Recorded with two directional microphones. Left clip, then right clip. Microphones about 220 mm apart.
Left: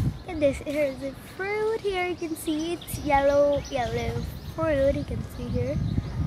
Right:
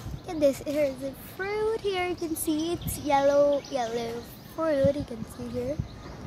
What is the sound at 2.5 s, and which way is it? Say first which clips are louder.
Speech: even; 15° right (ahead or behind).